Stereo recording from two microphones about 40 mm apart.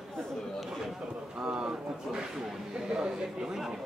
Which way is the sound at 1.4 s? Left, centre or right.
Centre.